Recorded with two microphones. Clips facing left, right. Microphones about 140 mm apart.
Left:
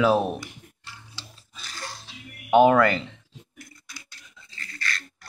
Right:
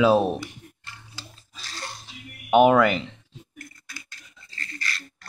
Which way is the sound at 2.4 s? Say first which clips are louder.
Even; 15° right (ahead or behind).